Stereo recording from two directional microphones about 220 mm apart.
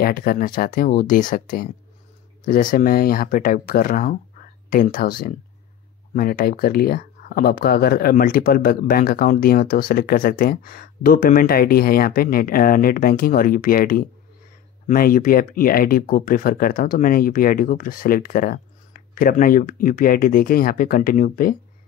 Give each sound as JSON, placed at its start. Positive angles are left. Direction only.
{"t": 0.0, "sound": "speech", "side_deg": 45}
{"t": 6.1, "sound": "speech", "side_deg": 40}